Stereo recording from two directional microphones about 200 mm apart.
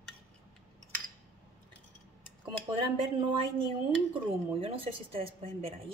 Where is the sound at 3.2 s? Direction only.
25° right (ahead or behind).